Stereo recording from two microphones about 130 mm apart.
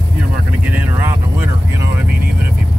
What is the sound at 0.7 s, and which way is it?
Vehicle, 10° right (ahead or behind).